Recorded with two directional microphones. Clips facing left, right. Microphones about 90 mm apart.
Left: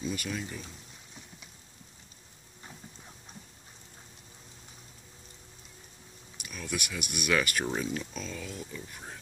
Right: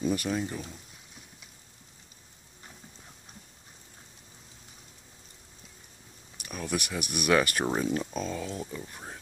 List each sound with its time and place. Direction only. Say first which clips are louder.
0.0 s speech: right 6 dB; 40° right (ahead or behind)
6.4 s speech: right 4 dB; 40° right (ahead or behind)